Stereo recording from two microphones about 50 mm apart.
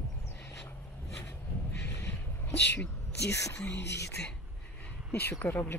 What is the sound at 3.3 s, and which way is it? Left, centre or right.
Speech, left.